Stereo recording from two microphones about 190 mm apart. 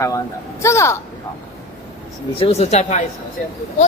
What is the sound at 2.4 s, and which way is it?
Speech, 35° left (ahead or behind).